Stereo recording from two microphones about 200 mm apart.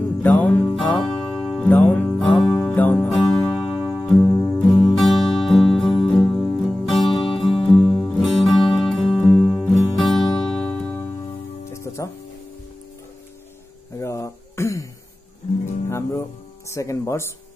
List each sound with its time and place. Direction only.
0.2 s music: 5° left (ahead or behind)
7.2 s music: 25° left (ahead or behind)
7.4 s music: centre (ahead or behind)
13.9 s a sound: 15° left (ahead or behind)
15.9 s music: 15° left (ahead or behind)